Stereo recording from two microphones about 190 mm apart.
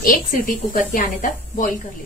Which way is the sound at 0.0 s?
45° left (ahead or behind).